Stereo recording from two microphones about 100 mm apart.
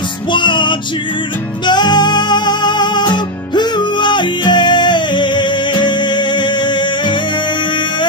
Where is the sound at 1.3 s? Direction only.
15° left (ahead or behind).